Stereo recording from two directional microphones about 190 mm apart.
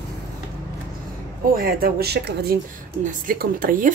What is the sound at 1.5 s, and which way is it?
Speech, 50° right (ahead or behind).